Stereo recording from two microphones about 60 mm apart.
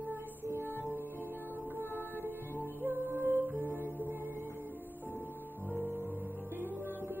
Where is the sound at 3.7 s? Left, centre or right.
Left.